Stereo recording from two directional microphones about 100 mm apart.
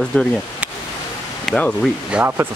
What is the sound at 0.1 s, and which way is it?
Speech, 10° left (ahead or behind).